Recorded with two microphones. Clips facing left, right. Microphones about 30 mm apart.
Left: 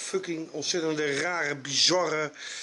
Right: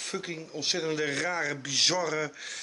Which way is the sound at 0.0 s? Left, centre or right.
Centre.